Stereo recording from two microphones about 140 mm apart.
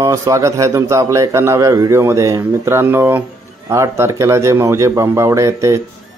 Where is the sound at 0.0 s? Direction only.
20° right (ahead or behind).